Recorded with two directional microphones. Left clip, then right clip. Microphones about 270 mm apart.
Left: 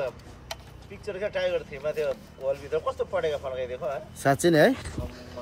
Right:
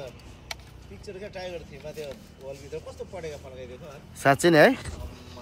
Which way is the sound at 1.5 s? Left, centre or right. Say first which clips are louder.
Left 10 dB; left.